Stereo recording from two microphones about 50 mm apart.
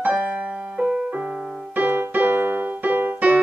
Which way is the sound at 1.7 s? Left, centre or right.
Right.